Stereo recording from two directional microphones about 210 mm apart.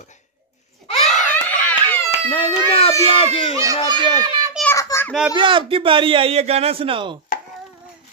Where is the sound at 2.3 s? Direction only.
25° left (ahead or behind).